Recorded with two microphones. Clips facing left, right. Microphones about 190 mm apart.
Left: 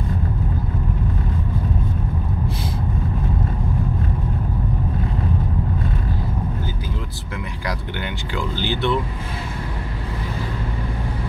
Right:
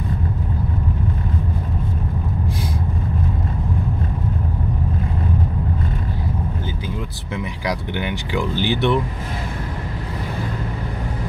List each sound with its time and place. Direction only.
8.0 s speech: 15° right (ahead or behind)